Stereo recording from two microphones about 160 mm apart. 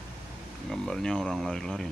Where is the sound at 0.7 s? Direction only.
5° left (ahead or behind).